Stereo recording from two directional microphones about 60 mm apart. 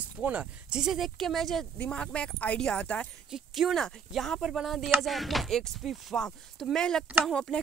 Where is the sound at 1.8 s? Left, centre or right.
Centre.